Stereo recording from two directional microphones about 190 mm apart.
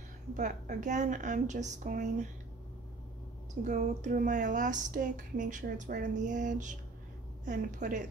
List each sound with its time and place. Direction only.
0.3 s speech: 40° right (ahead or behind)
3.6 s speech: 40° right (ahead or behind)